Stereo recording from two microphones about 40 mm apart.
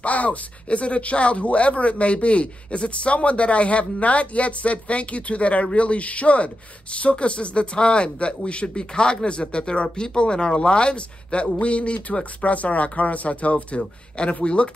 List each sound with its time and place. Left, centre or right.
0.0 s speech: left